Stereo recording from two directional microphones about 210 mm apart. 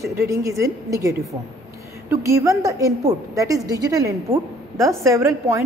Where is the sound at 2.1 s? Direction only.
15° right (ahead or behind).